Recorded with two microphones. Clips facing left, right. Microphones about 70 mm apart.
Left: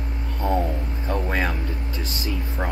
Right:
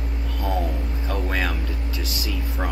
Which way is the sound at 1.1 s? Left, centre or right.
Left.